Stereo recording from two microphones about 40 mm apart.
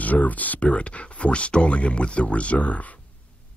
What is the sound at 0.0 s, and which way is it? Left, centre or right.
Speech, left.